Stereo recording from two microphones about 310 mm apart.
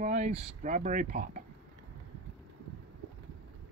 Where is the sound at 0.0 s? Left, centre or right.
Right.